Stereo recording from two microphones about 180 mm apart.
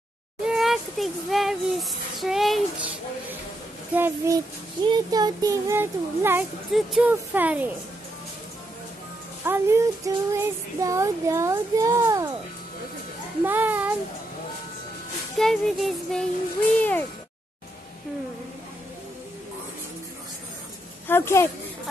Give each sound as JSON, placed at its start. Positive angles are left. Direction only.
{"t": 0.5, "sound": "a child's voice", "side_deg": 0}
{"t": 3.9, "sound": "child singing", "side_deg": -10}
{"t": 4.8, "sound": "speech", "side_deg": -25}
{"t": 6.7, "sound": "child singing", "side_deg": -5}
{"t": 9.4, "sound": "child singing", "side_deg": -15}
{"t": 13.4, "sound": "child singing", "side_deg": -10}
{"t": 15.3, "sound": "music", "side_deg": 0}
{"t": 16.7, "sound": "speech", "side_deg": 10}
{"t": 21.1, "sound": "speech", "side_deg": 15}